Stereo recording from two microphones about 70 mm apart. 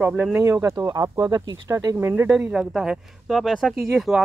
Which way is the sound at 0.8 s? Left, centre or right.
Right.